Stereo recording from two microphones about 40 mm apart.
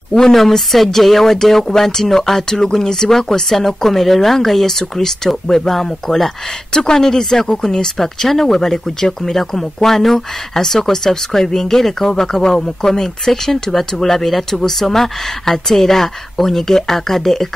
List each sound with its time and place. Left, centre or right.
0.3 s speech: centre